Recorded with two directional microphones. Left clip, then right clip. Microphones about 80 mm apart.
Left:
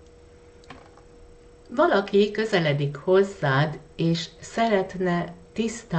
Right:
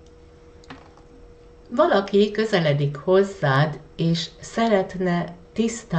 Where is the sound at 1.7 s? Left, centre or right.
Left.